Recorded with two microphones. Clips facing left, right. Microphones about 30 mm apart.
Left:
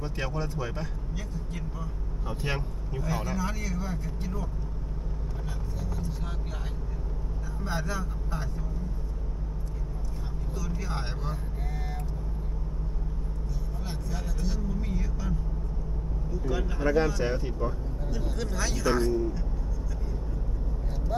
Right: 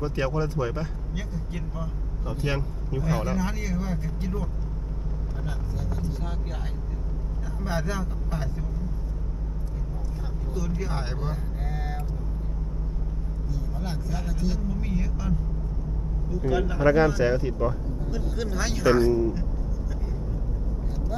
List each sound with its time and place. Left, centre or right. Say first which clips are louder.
0.0 s speech: right 6 dB; centre
5.4 s vehicle: right 5 dB; centre
7.6 s speech: right 3 dB; centre
10.5 s speech: right 5 dB; centre
13.8 s speech: right 4 dB; centre
16.8 s speech: right 5 dB; right
17.1 s speech: right 6 dB; centre